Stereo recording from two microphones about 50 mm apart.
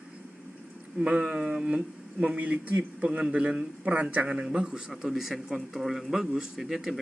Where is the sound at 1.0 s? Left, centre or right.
Right.